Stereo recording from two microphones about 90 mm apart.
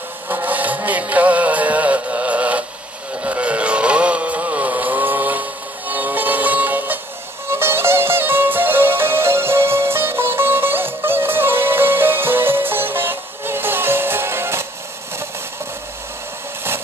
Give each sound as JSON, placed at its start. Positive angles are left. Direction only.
{"t": 0.3, "sound": "music", "side_deg": -20}